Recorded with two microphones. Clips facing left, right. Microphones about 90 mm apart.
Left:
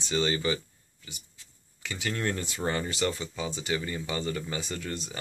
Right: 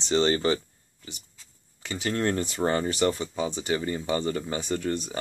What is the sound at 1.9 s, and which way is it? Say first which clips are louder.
Speech: right 5 dB; 30° right (ahead or behind).